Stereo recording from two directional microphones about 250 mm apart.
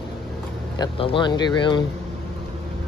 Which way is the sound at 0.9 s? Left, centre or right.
Left.